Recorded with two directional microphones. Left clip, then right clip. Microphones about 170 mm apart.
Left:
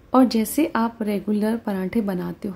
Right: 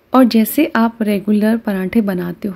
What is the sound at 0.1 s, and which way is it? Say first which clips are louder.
Speech: right 6 dB; 10° right (ahead or behind).